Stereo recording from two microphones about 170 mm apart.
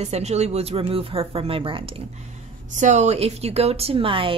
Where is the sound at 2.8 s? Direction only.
45° right (ahead or behind).